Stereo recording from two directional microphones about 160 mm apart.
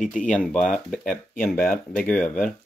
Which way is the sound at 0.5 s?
5° left (ahead or behind).